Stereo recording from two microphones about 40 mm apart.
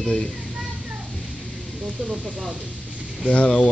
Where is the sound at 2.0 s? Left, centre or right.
Right.